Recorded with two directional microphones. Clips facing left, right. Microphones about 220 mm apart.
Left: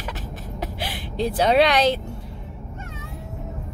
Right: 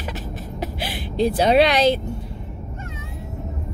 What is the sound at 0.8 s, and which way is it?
A woman's voice, 10° right (ahead or behind).